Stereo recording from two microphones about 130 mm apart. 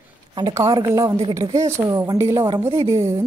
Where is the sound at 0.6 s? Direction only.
25° right (ahead or behind).